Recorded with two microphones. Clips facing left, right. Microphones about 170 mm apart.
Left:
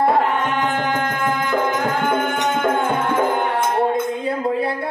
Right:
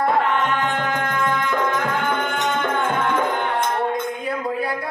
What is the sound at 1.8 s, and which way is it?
Music, 45° left (ahead or behind).